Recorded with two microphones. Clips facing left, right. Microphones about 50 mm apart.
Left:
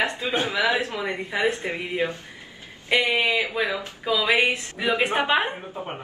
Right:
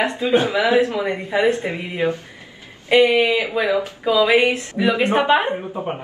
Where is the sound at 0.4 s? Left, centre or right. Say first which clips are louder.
Right 5 dB; right.